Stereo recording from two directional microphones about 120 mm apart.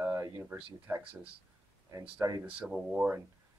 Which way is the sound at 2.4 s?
10° right (ahead or behind).